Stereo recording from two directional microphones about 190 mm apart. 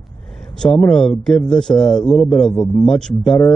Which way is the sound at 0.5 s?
Centre (ahead or behind).